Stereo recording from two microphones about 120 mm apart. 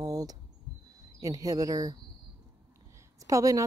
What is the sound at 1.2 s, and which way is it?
Speech, 30° right (ahead or behind).